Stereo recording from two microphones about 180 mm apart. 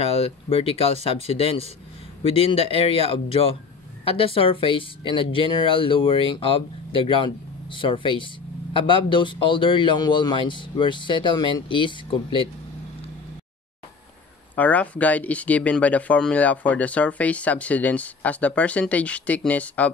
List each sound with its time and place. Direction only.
0.0 s speech: 35° left (ahead or behind)
14.5 s speech: 10° left (ahead or behind)